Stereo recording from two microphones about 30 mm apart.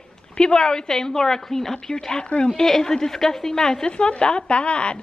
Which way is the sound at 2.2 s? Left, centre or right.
Left.